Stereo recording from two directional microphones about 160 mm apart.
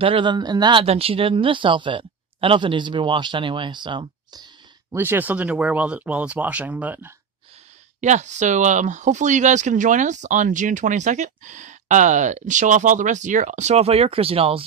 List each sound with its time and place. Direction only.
0.0 s speech: 30° right (ahead or behind)
4.9 s speech: 15° right (ahead or behind)
8.0 s speech: 50° right (ahead or behind)